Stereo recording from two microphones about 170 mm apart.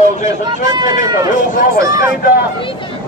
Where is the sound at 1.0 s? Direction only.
20° right (ahead or behind).